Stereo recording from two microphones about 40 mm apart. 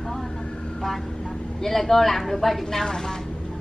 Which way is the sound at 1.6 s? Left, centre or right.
Centre.